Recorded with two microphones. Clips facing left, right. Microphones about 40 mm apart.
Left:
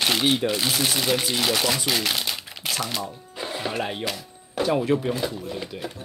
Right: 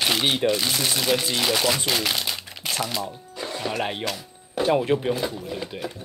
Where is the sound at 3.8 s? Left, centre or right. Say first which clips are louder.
Right 1 dB; centre.